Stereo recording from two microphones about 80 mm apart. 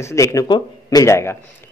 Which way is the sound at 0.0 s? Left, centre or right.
Left.